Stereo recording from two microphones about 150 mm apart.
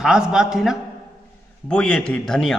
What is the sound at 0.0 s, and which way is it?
A man's voice, 5° right (ahead or behind).